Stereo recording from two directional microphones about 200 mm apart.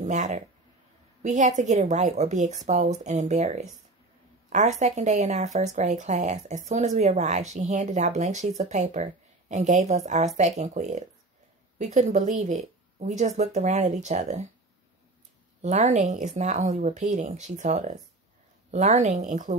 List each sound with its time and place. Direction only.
0.0 s speech: 35° right (ahead or behind)
15.6 s speech: 35° right (ahead or behind)